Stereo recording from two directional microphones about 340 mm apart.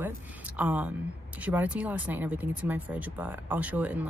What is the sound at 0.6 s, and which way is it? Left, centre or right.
Speech, centre.